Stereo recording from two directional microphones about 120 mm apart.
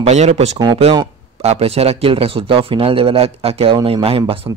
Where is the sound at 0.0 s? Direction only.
65° right (ahead or behind).